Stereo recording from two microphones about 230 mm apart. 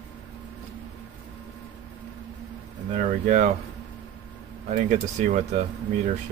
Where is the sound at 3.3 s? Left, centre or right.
Right.